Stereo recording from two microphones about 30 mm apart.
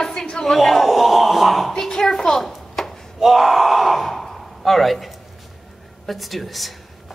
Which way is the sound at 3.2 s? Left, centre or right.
Centre.